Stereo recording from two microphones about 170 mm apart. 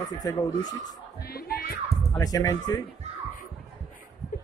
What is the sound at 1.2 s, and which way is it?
Music, 65° left (ahead or behind).